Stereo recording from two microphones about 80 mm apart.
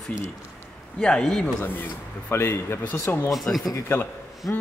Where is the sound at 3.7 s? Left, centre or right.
Left.